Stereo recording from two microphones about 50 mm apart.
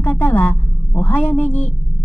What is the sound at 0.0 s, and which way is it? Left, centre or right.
A woman's voice, left.